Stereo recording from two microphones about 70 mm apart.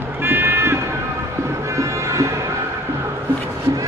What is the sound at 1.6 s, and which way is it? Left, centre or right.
Music, right.